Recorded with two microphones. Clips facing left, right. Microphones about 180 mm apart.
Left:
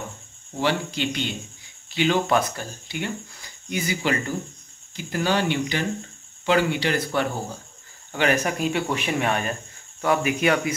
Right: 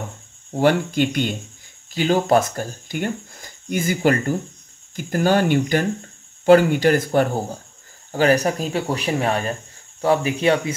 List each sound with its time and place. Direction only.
0.5 s speech: 50° right (ahead or behind); by 10.7 s 30° right (ahead or behind)